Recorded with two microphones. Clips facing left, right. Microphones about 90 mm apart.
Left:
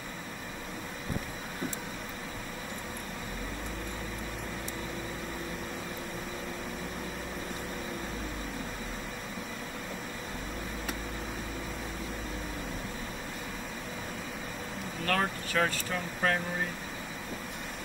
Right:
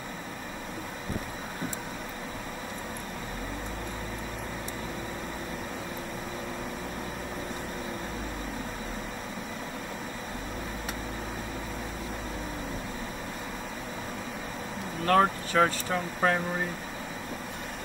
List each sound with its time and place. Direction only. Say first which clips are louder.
15.0 s speech: right 8 dB; 30° right (ahead or behind)